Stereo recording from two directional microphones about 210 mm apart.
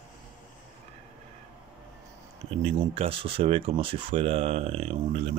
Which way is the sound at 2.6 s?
30° right (ahead or behind).